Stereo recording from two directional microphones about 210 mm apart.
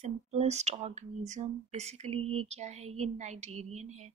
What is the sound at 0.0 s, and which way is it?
Speech, 30° right (ahead or behind).